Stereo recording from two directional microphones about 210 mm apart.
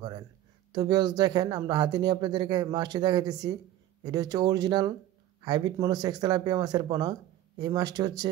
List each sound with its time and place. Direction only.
0.7 s speech: 20° right (ahead or behind)